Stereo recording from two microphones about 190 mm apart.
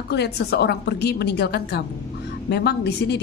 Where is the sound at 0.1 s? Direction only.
60° left (ahead or behind).